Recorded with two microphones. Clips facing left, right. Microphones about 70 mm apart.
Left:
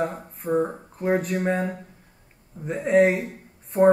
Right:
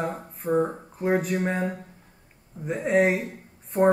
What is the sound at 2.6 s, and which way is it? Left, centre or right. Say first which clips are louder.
Speech: left 3 dB; centre.